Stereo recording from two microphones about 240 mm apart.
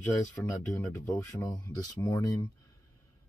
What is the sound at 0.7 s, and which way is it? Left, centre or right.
Speech, centre.